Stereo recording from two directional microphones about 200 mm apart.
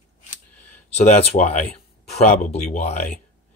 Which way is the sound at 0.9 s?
35° left (ahead or behind).